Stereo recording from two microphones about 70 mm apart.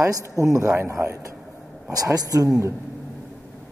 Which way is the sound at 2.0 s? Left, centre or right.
Right.